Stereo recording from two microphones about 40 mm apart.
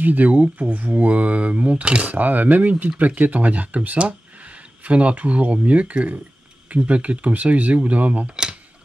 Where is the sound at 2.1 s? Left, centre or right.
Right.